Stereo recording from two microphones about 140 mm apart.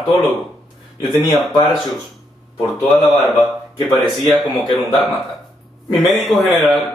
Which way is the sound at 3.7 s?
35° left (ahead or behind).